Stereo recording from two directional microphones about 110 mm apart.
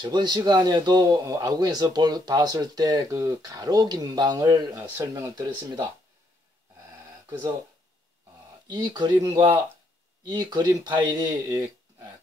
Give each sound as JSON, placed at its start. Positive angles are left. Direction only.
{"t": 0.0, "sound": "a man's voice", "side_deg": -40}
{"t": 7.2, "sound": "speech", "side_deg": -25}
{"t": 8.6, "sound": "a man's voice", "side_deg": -40}